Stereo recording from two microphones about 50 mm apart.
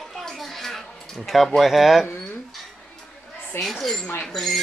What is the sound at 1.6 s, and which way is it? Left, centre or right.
Speech, centre.